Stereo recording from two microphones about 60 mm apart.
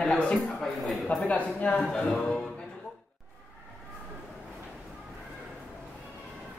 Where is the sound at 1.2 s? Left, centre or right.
Left.